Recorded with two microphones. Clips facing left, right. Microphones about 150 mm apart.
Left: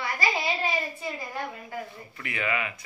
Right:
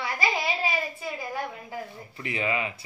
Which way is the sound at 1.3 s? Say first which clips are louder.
Right 1 dB; 15° right (ahead or behind).